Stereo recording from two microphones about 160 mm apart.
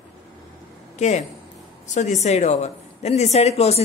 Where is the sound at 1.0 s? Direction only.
45° left (ahead or behind).